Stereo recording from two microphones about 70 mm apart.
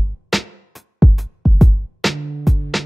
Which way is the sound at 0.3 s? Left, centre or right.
Centre.